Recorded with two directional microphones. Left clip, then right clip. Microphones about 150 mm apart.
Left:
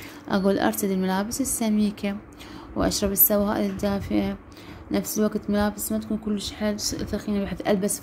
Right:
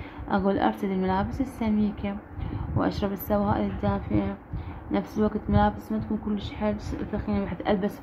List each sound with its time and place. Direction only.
0.3 s a woman's voice: 35° left (ahead or behind)
2.8 s a woman's voice: 30° left (ahead or behind)
4.9 s a woman's voice: 30° left (ahead or behind)